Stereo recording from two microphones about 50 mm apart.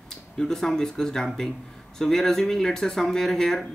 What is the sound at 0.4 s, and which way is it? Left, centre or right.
Speech, centre.